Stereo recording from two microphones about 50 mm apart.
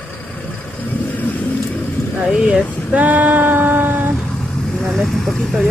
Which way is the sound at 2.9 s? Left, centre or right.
Right.